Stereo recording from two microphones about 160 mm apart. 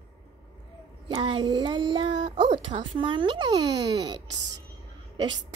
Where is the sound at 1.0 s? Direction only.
30° right (ahead or behind).